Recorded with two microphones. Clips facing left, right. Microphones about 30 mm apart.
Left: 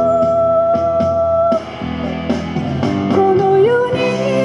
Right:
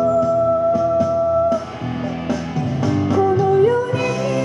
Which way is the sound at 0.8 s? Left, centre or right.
Left.